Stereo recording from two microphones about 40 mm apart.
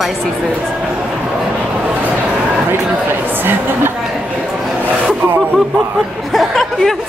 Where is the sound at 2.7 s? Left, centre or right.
Right.